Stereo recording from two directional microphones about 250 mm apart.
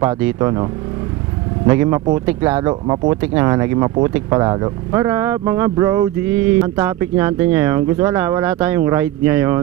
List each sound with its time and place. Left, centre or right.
0.0 s speech: centre
1.7 s speech: centre